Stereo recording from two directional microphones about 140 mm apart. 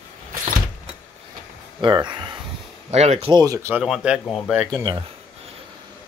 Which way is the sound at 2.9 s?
50° right (ahead or behind).